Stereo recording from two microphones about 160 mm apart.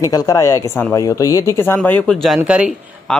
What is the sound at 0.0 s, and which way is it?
Speech, 20° left (ahead or behind).